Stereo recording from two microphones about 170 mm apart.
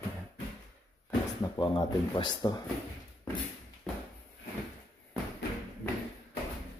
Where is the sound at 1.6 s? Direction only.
25° left (ahead or behind).